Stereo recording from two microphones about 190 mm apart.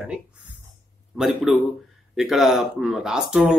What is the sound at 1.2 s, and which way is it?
A man's voice, centre (ahead or behind).